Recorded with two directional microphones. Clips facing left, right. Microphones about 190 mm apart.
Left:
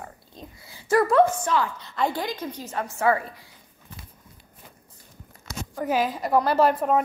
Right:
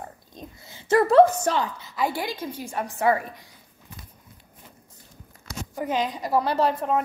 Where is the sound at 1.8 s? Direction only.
5° right (ahead or behind).